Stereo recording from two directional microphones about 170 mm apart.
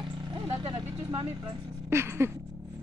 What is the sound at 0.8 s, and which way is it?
Vehicle, 10° right (ahead or behind).